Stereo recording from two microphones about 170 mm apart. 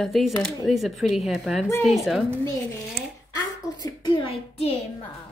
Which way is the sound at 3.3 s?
25° left (ahead or behind).